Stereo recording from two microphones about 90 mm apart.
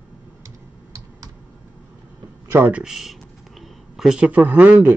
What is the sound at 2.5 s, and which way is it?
Speech, 20° right (ahead or behind).